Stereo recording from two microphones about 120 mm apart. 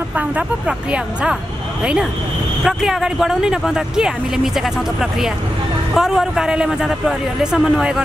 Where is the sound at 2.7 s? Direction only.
5° right (ahead or behind).